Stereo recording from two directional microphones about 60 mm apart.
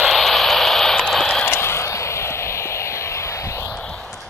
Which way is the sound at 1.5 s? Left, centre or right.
Left.